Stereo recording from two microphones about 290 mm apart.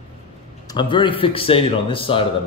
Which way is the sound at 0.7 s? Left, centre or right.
Centre.